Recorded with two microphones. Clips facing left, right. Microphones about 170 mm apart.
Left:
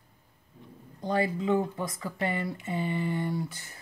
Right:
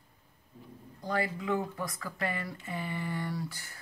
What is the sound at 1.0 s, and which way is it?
Speech, 25° left (ahead or behind).